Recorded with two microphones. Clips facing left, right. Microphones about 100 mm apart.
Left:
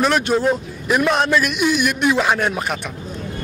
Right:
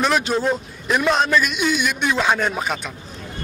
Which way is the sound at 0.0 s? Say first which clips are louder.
Left 2 dB; 5° left (ahead or behind).